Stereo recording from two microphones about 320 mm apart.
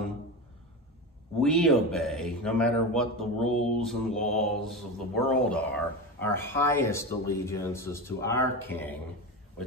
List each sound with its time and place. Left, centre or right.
1.4 s a man's voice: centre